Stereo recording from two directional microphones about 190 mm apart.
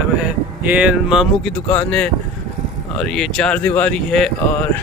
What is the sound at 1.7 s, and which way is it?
Speech, 5° left (ahead or behind).